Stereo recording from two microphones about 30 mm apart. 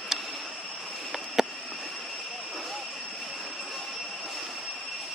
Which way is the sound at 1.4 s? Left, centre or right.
Centre.